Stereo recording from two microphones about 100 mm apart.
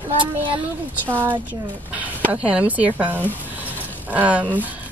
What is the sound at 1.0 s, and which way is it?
Speech, 20° right (ahead or behind).